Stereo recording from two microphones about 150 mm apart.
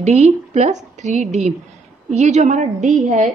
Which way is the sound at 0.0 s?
50° right (ahead or behind).